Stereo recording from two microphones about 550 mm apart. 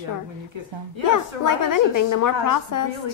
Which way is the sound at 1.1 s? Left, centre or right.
Left.